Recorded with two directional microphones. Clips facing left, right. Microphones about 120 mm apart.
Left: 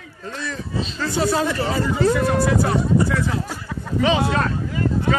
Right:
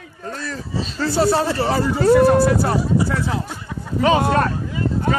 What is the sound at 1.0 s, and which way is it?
Speech, 35° right (ahead or behind).